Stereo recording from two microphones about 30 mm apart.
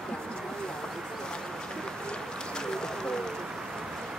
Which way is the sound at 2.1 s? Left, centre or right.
Left.